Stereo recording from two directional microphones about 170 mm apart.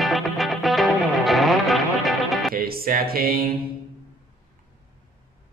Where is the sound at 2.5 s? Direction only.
60° right (ahead or behind).